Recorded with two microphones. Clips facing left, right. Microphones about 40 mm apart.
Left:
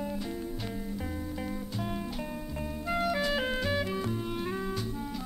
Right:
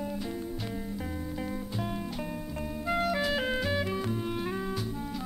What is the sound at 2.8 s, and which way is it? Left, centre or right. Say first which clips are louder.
Clarinet: right 1 dB; centre.